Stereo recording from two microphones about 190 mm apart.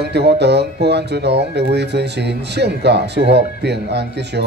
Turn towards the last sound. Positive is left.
turn(degrees=-60)  # may be behind; listen again after turning